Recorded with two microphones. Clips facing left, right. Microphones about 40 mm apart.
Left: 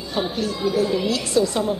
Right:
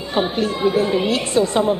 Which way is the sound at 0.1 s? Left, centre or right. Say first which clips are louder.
Right 5 dB; right.